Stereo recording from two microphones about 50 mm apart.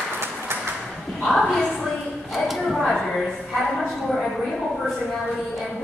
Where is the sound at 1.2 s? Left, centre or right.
Centre.